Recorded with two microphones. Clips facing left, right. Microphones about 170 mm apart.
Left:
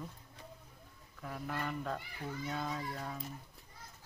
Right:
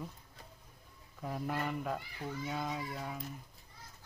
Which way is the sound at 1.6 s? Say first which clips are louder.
Right 2 dB; 10° right (ahead or behind).